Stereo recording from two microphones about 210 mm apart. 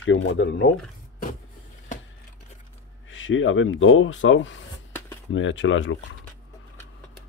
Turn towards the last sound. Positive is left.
turn(degrees=65)  # may be behind; listen again after turning